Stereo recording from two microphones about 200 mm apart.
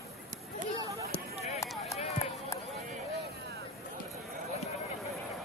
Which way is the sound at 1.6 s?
15° left (ahead or behind).